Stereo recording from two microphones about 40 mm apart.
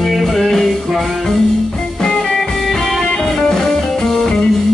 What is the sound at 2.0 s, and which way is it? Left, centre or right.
Music, centre.